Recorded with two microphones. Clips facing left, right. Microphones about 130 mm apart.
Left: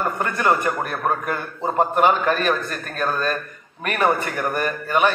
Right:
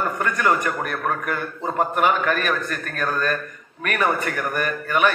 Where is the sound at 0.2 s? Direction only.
25° left (ahead or behind).